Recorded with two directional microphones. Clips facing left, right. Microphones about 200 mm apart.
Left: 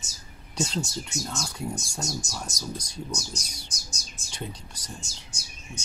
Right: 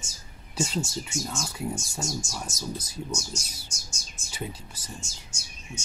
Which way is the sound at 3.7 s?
35° left (ahead or behind).